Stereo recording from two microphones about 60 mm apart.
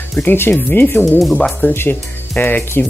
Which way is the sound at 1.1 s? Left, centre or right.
Centre.